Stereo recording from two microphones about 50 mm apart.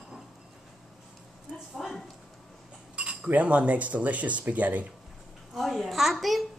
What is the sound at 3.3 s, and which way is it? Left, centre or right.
Speech, right.